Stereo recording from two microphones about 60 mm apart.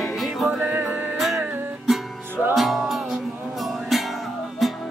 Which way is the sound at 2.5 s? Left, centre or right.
Centre.